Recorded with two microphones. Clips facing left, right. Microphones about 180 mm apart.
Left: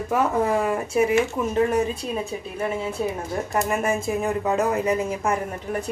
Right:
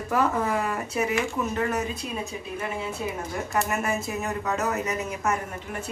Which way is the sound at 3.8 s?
25° left (ahead or behind).